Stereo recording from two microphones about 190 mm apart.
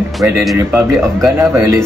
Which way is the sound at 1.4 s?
15° right (ahead or behind).